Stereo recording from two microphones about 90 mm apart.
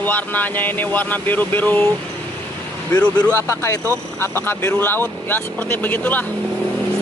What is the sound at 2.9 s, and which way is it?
Speech, 15° left (ahead or behind).